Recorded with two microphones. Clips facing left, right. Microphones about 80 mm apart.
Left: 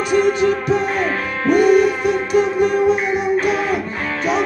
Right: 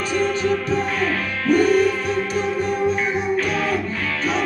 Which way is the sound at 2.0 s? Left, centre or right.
Right.